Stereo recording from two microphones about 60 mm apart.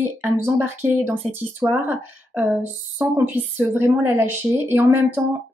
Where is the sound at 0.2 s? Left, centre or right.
Right.